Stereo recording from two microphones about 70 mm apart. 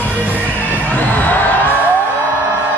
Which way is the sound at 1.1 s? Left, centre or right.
Left.